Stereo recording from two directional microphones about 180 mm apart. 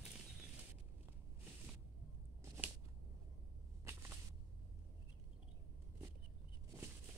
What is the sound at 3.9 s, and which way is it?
Whip, 15° right (ahead or behind).